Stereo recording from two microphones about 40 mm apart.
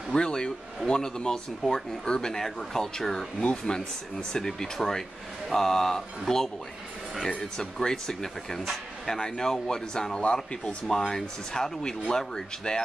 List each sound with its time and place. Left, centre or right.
0.1 s speech: left
3.4 s speech: centre
7.2 s speech: left
10.2 s speech: left
10.9 s speech: centre